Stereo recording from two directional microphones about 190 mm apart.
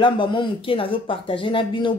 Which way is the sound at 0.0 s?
25° left (ahead or behind).